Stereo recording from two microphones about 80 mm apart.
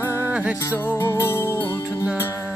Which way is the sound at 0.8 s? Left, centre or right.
Left.